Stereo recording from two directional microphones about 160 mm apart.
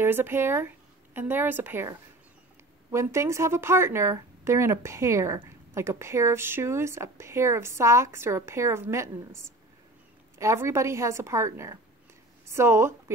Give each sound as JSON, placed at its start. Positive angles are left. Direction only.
{"t": 0.0, "sound": "speech", "side_deg": -15}
{"t": 10.4, "sound": "speech", "side_deg": -15}